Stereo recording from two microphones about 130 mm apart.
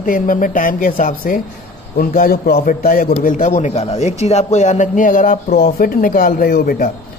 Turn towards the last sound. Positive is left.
turn(degrees=90)